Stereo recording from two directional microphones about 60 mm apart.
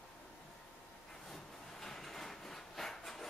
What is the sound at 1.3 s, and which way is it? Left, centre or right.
Wood, centre.